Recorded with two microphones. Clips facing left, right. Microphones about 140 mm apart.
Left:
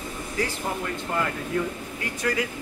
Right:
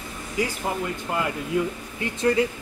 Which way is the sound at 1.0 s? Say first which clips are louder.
Left 1 dB; 15° right (ahead or behind).